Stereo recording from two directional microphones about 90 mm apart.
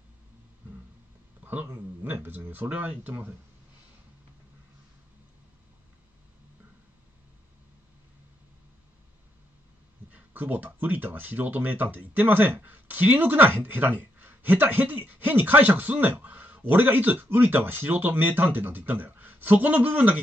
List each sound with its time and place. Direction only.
1.4 s speech: 20° right (ahead or behind)
10.1 s speech: 20° right (ahead or behind)